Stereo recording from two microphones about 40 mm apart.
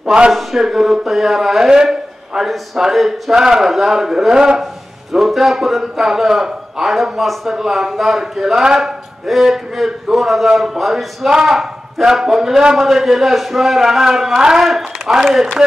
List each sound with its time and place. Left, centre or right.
0.0 s speech: right
0.3 s a man's voice: centre